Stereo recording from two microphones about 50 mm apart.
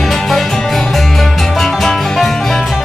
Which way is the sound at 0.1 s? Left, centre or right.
Centre.